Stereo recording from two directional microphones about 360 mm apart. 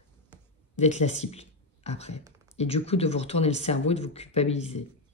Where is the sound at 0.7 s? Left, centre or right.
Centre.